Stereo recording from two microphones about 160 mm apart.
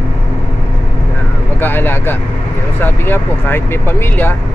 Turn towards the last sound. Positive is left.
turn(degrees=15)  # may be behind; listen again after turning